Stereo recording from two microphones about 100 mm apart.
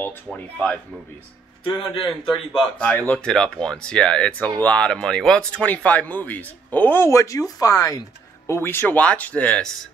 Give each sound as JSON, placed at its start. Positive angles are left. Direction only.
{"t": 0.0, "sound": "speech", "side_deg": 10}
{"t": 2.0, "sound": "a man's voice", "side_deg": 0}
{"t": 2.8, "sound": "speech", "side_deg": 15}
{"t": 8.5, "sound": "speech", "side_deg": 25}